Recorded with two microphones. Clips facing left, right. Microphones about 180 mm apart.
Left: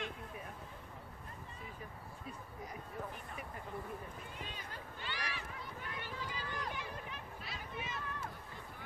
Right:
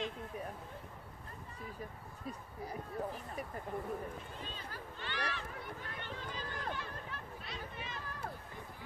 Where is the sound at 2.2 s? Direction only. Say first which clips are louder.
Right 5 dB; 35° right (ahead or behind).